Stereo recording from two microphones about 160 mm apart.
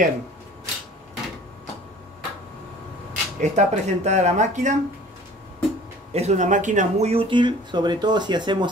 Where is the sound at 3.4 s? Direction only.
45° right (ahead or behind).